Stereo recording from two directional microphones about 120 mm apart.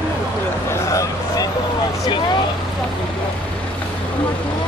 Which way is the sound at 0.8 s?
25° left (ahead or behind).